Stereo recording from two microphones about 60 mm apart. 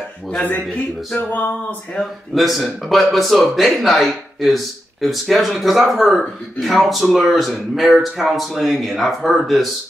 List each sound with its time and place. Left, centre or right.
1.1 s music: left
2.3 s speech: centre